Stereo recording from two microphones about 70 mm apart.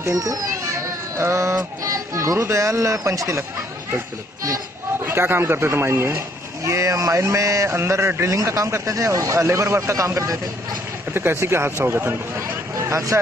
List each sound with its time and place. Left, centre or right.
0.1 s a child's voice: right
1.1 s speech: right
1.6 s speech: right
5.0 s speech: right
11.1 s a man's voice: right
12.7 s speech: right